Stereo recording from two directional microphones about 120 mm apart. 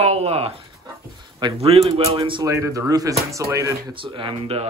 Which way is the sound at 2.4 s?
25° right (ahead or behind).